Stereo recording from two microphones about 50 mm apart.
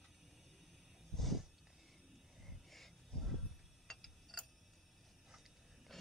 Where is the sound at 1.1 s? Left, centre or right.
Centre.